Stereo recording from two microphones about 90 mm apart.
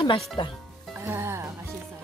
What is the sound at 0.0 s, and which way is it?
Speech, 65° left (ahead or behind).